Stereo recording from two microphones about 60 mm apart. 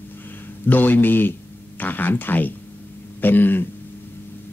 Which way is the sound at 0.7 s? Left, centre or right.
Left.